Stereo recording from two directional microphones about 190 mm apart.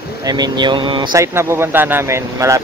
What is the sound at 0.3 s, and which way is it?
Speech, 20° right (ahead or behind).